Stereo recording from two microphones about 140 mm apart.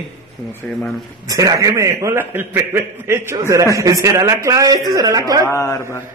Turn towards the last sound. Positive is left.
turn(degrees=20)  # may be behind; listen again after turning